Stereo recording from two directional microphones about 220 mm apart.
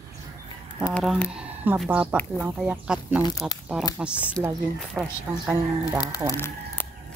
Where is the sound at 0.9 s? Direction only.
5° left (ahead or behind).